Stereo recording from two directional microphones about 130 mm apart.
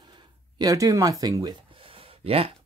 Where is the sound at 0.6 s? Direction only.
25° right (ahead or behind).